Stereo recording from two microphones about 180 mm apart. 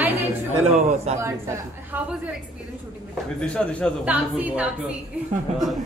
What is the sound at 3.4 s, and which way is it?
Speech, 5° left (ahead or behind).